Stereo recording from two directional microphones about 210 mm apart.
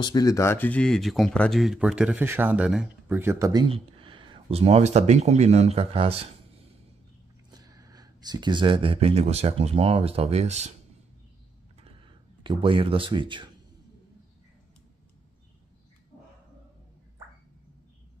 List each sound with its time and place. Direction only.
0.0 s speech: 20° left (ahead or behind); by 3.6 s 15° right (ahead or behind)
3.6 s speech: 25° right (ahead or behind)
7.5 s speech: 15° right (ahead or behind)
12.4 s speech: 25° right (ahead or behind)